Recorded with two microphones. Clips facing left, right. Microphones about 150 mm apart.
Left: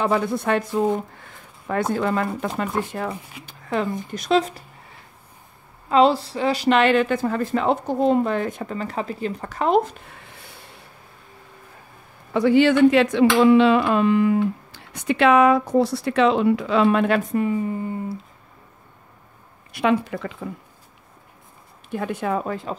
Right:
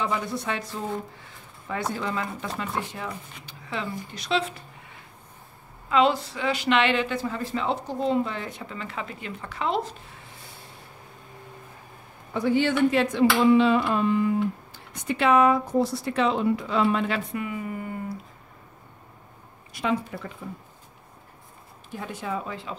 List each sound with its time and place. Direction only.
0.0 s speech: 55° left (ahead or behind)
3.4 s a sound: 45° left (ahead or behind)
4.1 s speech: 45° left (ahead or behind)
5.9 s speech: 35° left (ahead or behind); by 9.9 s 50° left (ahead or behind)
12.4 s carnatic music: 90° left; by 17.2 s 60° left (ahead or behind)
17.3 s speech: 35° left (ahead or behind)
19.7 s carnatic music: 70° left (ahead or behind); by 20.3 s 90° left
21.9 s speech: 60° left (ahead or behind)